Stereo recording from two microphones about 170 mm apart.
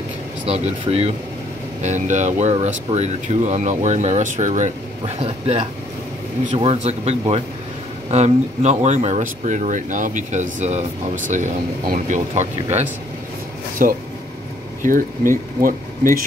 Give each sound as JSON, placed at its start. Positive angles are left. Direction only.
{"t": 0.5, "sound": "speech", "side_deg": -35}
{"t": 1.8, "sound": "speech", "side_deg": -45}
{"t": 13.8, "sound": "speech", "side_deg": -50}